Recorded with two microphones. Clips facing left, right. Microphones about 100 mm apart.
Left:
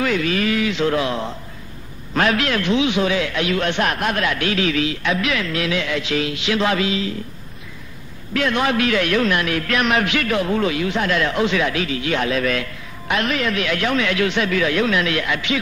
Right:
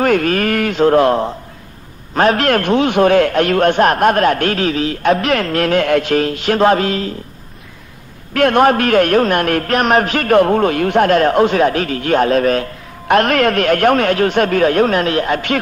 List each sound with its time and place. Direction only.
0.0 s a man's voice: 50° right (ahead or behind)
8.3 s a man's voice: 50° right (ahead or behind)